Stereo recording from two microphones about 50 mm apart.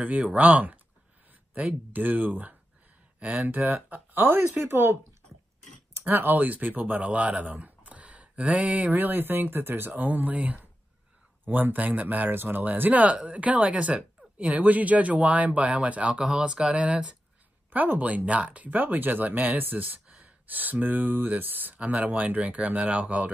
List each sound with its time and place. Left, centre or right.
0.0 s speech: right
4.6 s speech: right
6.0 s speech: right
8.9 s speech: right
17.6 s speech: right